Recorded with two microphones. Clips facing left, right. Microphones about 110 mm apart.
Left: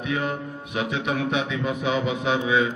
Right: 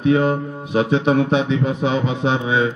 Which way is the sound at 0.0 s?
30° right (ahead or behind).